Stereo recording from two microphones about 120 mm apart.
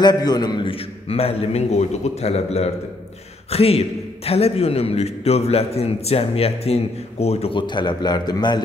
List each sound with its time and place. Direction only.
0.0 s a man's voice: 35° left (ahead or behind)
1.0 s a man's voice: 55° left (ahead or behind)
7.5 s a man's voice: 40° left (ahead or behind)